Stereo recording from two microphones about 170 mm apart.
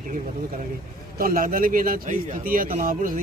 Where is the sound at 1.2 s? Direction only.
55° right (ahead or behind).